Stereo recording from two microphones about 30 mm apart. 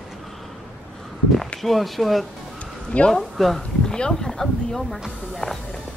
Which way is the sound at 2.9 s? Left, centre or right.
Left.